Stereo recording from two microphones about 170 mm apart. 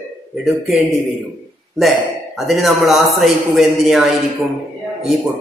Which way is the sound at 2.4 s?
Centre (ahead or behind).